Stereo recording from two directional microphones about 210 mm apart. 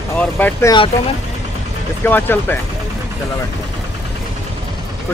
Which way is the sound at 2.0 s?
10° left (ahead or behind).